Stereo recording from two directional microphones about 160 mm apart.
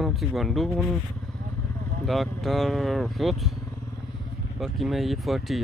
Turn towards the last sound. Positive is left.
turn(degrees=0)  # may be behind; listen again after turning